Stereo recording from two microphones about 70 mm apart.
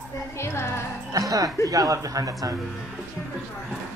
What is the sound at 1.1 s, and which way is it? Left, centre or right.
Speech, right.